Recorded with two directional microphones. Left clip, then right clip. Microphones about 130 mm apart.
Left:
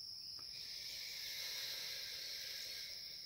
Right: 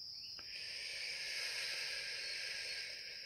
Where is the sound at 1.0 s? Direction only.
20° left (ahead or behind).